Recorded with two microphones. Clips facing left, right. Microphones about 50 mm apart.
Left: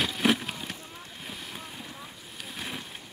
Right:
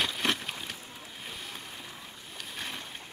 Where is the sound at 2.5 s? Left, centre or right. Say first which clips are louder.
Left 2 dB; centre.